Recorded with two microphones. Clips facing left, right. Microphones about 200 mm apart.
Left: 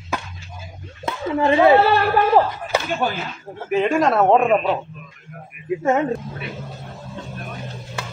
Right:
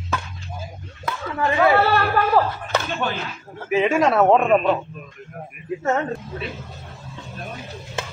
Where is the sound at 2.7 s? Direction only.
5° left (ahead or behind).